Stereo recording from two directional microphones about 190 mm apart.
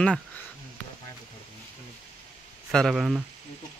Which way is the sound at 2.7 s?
Centre (ahead or behind).